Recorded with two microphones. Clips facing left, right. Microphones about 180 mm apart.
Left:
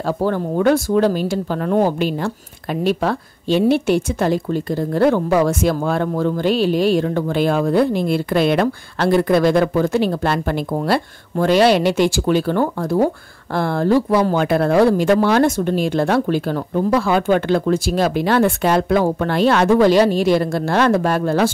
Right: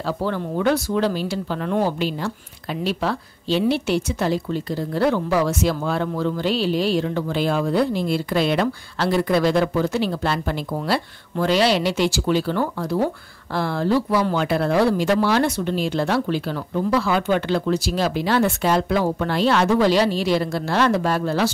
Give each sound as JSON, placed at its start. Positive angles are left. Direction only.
{"t": 0.0, "sound": "speech", "side_deg": 45}